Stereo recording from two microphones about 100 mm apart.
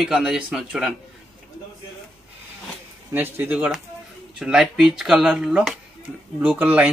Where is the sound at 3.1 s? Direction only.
20° right (ahead or behind).